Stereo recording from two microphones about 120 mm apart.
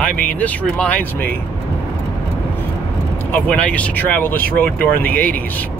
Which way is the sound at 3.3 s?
10° left (ahead or behind).